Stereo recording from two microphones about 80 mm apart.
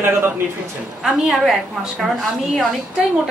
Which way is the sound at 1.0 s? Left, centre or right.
Centre.